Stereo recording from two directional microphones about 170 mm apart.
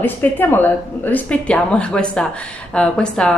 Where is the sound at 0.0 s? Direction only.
10° left (ahead or behind).